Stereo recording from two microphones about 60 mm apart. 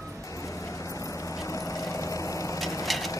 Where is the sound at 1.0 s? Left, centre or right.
Left.